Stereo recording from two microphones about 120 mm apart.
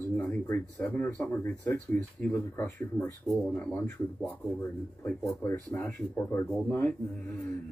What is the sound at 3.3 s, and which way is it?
A man's voice, 5° left (ahead or behind).